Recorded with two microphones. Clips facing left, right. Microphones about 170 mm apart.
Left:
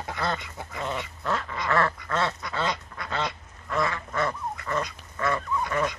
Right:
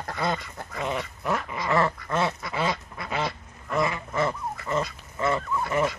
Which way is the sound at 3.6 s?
20° right (ahead or behind).